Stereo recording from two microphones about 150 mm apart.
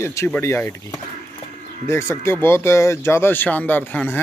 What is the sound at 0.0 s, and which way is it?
Speech, 20° left (ahead or behind).